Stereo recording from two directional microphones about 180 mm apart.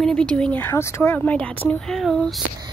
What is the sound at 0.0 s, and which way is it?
A woman's voice, 5° left (ahead or behind).